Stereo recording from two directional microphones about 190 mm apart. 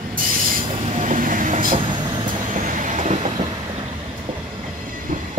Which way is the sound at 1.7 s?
25° right (ahead or behind).